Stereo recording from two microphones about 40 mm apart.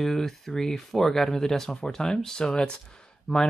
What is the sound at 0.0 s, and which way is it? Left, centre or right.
Speech, centre.